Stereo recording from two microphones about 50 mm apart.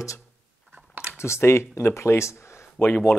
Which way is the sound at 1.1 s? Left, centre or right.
Left.